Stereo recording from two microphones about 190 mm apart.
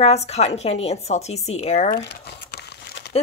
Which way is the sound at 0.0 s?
35° left (ahead or behind).